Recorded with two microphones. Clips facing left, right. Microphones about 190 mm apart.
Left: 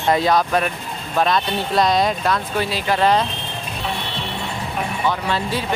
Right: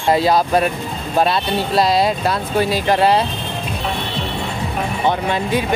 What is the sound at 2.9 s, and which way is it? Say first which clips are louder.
Speech: right 1 dB; 10° right (ahead or behind).